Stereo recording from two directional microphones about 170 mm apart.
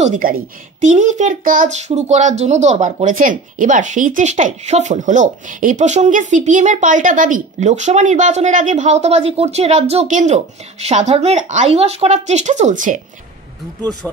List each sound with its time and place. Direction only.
0.0 s a child's voice: 50° right (ahead or behind)